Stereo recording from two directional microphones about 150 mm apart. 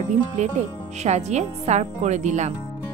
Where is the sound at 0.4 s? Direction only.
50° right (ahead or behind).